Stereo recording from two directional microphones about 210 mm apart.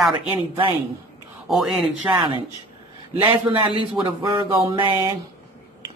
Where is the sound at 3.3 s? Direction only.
25° right (ahead or behind).